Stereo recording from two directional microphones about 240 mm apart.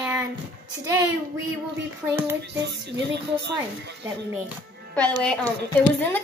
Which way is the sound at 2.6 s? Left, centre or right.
Right.